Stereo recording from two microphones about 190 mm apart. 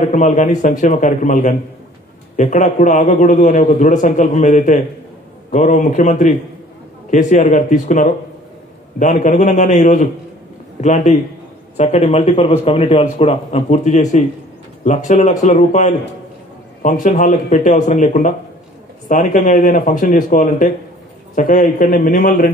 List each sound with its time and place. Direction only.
0.0 s a man's voice: 40° left (ahead or behind)